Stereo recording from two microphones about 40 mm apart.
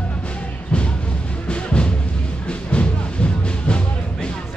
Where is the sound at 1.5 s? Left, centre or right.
Left.